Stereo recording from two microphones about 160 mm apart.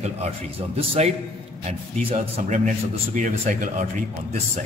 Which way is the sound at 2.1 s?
50° right (ahead or behind).